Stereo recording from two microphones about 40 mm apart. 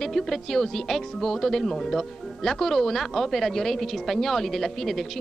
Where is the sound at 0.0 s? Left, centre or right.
Centre.